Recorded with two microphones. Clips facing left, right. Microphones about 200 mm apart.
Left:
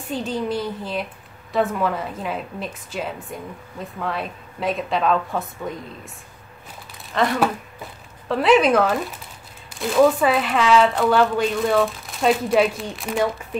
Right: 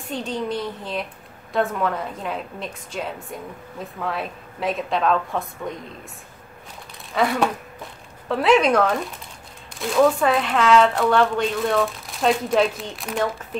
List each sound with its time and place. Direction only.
0.1 s speech: centre (ahead or behind)
7.2 s speech: 5° right (ahead or behind)